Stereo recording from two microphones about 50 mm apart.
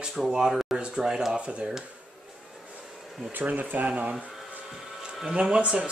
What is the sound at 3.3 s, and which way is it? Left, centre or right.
Speech, right.